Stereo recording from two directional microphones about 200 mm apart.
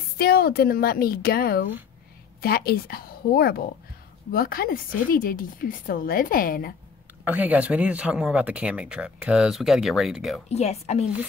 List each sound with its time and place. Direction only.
0.2 s speech: 50° left (ahead or behind)
7.2 s speech: 5° right (ahead or behind)
10.5 s a woman's voice: 35° left (ahead or behind)